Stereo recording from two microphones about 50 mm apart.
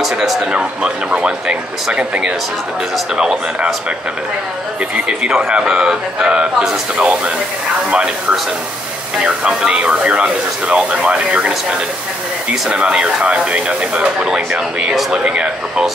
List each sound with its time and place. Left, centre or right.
0.4 s speech: centre
4.9 s speech: right
9.5 s speech: centre
12.6 s speech: centre